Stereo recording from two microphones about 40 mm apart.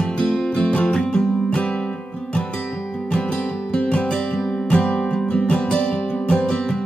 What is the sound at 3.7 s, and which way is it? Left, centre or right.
Music, left.